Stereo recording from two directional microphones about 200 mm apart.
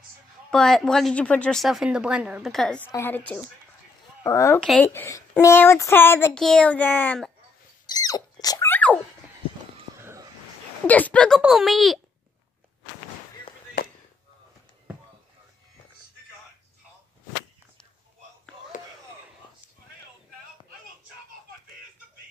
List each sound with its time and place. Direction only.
0.5 s a woman's voice: 5° left (ahead or behind)
4.6 s speech: 5° left (ahead or behind)
7.8 s rodents: 20° left (ahead or behind)
9.9 s a sound: 15° right (ahead or behind)
10.9 s a woman's voice: 5° left (ahead or behind)